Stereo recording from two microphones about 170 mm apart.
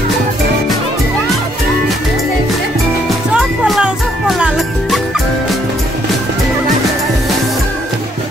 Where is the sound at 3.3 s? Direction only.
Centre (ahead or behind).